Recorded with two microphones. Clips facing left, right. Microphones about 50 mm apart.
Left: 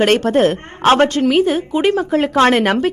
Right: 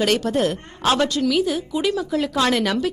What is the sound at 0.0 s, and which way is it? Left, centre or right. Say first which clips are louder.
A woman's voice: left 7 dB; left.